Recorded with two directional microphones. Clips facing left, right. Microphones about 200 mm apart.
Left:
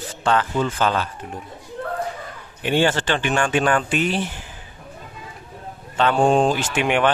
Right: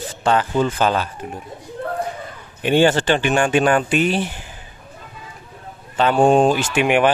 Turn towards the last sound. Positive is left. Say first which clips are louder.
# right 3 dB
turn(degrees=-10)  # may be behind; listen again after turning